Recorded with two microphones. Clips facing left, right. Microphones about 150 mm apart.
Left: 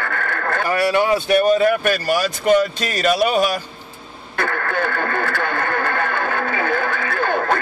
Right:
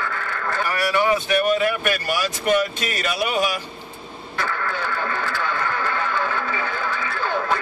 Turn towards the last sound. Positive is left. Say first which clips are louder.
# left 4 dB
turn(degrees=55)  # may be behind; listen again after turning